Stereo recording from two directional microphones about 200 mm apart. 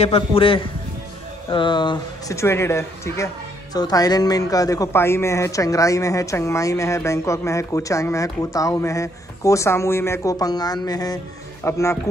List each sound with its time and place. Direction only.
0.0 s a man's voice: 30° left (ahead or behind); by 12.0 s 15° left (ahead or behind)